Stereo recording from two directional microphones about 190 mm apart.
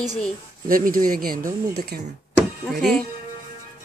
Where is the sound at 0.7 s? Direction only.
45° right (ahead or behind).